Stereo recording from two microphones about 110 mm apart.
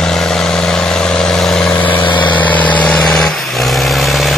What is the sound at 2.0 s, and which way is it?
Vehicle, 45° left (ahead or behind).